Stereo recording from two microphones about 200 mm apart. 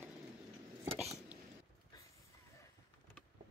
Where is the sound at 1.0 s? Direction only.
35° right (ahead or behind).